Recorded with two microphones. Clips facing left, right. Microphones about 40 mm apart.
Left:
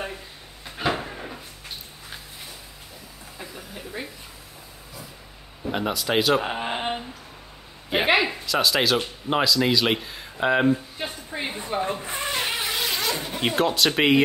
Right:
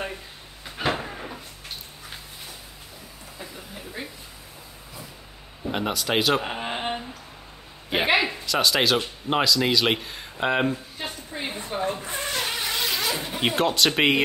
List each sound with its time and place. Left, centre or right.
0.7 s train: centre
5.7 s speech: centre
10.7 s a sound: centre
11.4 s speech: centre
12.1 s a sound: left
12.6 s zipper: centre